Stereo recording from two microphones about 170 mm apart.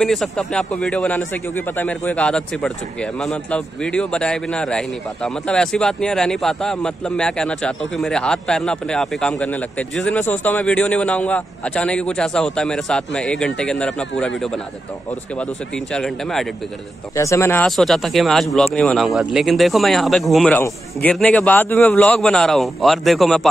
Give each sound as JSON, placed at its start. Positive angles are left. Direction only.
{"t": 0.0, "sound": "a man's voice", "side_deg": 0}
{"t": 15.9, "sound": "a man's voice", "side_deg": 5}
{"t": 17.1, "sound": "speech", "side_deg": 20}
{"t": 17.6, "sound": "a man's voice", "side_deg": 0}